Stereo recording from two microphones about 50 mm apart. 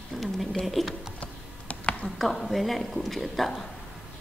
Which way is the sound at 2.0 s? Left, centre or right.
Centre.